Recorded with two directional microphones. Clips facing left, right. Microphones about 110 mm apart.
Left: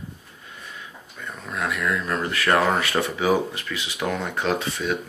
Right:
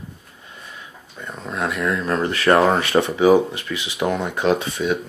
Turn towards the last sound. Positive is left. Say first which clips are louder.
# right 5 dB
turn(degrees=-20)  # may be behind; listen again after turning